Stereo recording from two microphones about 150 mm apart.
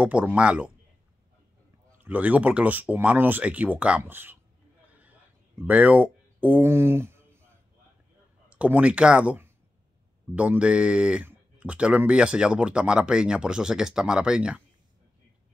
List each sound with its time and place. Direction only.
0.0 s speech: 10° right (ahead or behind)
1.9 s speech: 10° right (ahead or behind)
5.6 s speech: 10° right (ahead or behind)